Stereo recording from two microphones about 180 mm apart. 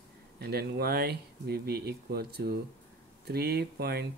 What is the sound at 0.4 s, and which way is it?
Speech, 60° right (ahead or behind).